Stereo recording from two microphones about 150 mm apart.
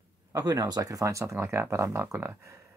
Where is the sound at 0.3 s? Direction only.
25° right (ahead or behind).